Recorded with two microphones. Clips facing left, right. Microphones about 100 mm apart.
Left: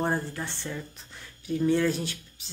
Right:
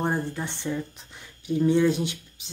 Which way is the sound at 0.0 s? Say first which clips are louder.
Right 1 dB; 15° right (ahead or behind).